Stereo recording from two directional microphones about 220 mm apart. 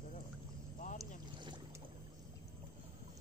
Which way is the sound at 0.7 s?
35° left (ahead or behind).